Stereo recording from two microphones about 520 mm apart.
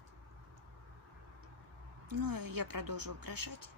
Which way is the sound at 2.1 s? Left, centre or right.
Right.